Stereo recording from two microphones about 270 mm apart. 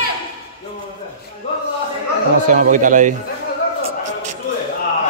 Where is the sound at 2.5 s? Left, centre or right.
Right.